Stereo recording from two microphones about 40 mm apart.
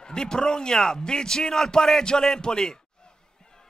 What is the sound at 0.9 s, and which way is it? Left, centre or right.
A man's voice, centre.